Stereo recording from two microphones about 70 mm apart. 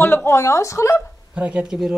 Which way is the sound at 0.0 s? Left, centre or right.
Left.